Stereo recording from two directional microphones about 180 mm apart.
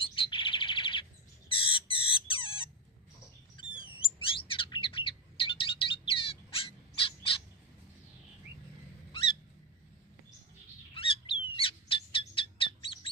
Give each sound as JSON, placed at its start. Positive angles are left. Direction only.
{"t": 0.0, "sound": "bird", "side_deg": 30}
{"t": 1.5, "sound": "a sound", "side_deg": 30}
{"t": 3.5, "sound": "chirp", "side_deg": 30}
{"t": 11.0, "sound": "bird", "side_deg": 30}